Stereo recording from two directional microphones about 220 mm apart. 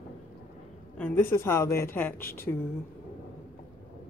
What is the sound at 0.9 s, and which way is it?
A woman's voice, 5° left (ahead or behind).